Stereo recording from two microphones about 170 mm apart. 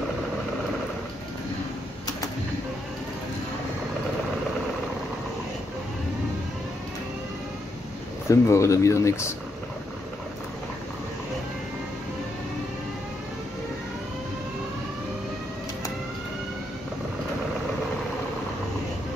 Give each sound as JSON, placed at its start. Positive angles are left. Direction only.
{"t": 8.3, "sound": "speech", "side_deg": 15}